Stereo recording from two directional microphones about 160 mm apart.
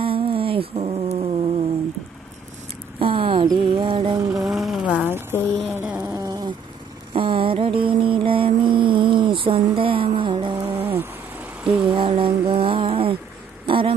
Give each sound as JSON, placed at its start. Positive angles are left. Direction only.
{"t": 0.0, "sound": "a sound", "side_deg": -35}
{"t": 3.0, "sound": "mantra", "side_deg": -35}
{"t": 4.5, "sound": "a sound", "side_deg": 0}
{"t": 5.3, "sound": "speech", "side_deg": 10}
{"t": 5.7, "sound": "insect", "side_deg": -15}
{"t": 6.0, "sound": "insect", "side_deg": -25}
{"t": 7.2, "sound": "mantra", "side_deg": -35}
{"t": 10.6, "sound": "cat", "side_deg": -15}
{"t": 11.9, "sound": "a sound", "side_deg": -30}